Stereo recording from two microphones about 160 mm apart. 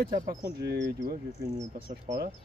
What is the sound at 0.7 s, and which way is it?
Speech, 75° right (ahead or behind).